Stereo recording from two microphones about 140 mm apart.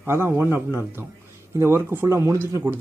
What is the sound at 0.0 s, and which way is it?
Speech, 15° right (ahead or behind).